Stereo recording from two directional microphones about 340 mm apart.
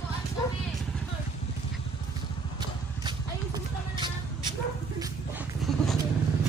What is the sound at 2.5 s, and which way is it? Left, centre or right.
Vehicle, centre.